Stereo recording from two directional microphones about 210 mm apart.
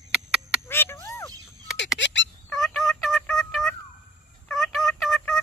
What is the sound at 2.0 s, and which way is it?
Fowl, 60° left (ahead or behind).